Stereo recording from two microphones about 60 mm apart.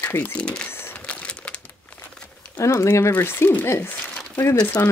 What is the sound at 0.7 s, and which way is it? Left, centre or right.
Crumpling, left.